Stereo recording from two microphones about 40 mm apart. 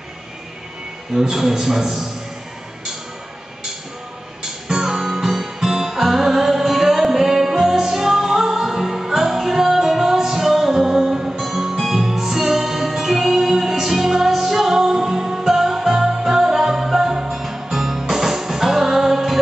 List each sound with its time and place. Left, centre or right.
1.1 s a man's voice: centre
4.4 s music: centre